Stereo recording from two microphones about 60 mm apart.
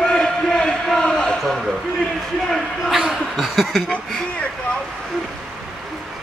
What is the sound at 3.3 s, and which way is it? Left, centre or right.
Chuckle, centre.